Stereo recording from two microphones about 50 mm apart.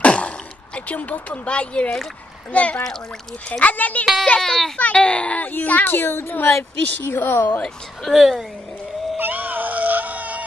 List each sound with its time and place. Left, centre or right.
0.0 s gasp: left
0.7 s speech: left
4.4 s speech: centre
4.9 s speech: left
5.4 s speech: left
5.9 s a woman's voice: left
8.1 s a woman's voice: centre
9.2 s a sound: right